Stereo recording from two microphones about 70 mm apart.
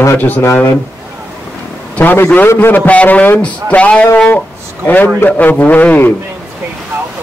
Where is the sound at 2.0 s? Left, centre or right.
Left.